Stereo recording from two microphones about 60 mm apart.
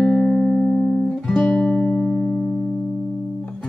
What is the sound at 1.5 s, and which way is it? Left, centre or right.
Music, centre.